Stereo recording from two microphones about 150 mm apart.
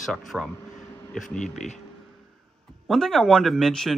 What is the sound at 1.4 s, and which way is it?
Speech, 50° left (ahead or behind).